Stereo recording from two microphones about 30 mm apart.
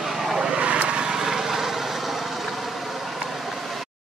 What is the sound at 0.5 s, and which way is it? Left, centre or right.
Vehicle, right.